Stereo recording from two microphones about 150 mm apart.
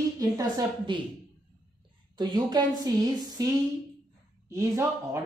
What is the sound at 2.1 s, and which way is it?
Speech, 30° right (ahead or behind).